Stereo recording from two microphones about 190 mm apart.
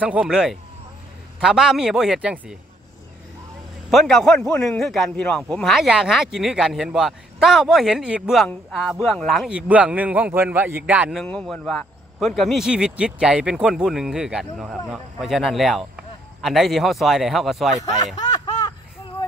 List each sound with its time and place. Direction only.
0.0 s a man's voice: 5° right (ahead or behind)
3.9 s a man's voice: centre (ahead or behind)
17.7 s a sound: 20° left (ahead or behind)